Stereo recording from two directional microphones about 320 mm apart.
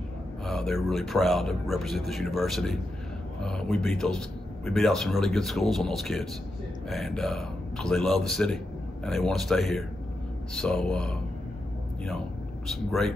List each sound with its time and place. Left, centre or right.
0.5 s speech: centre
12.6 s speech: centre